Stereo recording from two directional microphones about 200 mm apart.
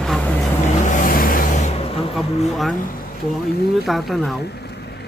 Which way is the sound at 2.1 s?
Centre (ahead or behind).